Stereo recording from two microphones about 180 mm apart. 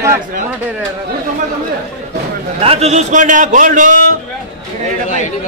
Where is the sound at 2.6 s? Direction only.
35° right (ahead or behind).